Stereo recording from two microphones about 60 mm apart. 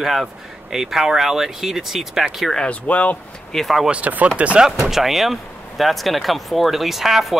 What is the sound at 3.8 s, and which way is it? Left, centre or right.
Speech, right.